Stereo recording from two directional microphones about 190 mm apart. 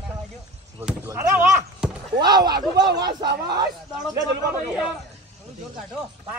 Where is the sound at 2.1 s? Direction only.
20° right (ahead or behind).